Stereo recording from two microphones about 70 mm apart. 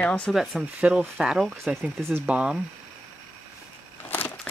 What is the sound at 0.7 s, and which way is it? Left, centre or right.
Speech, centre.